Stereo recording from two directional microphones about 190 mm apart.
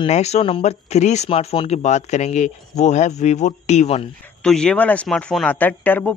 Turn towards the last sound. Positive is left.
turn(degrees=10)  # may be behind; listen again after turning